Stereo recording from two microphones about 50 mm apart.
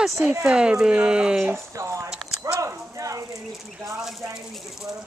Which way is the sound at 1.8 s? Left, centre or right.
Right.